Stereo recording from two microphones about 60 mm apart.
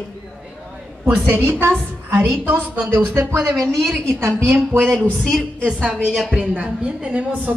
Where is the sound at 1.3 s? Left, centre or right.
Right.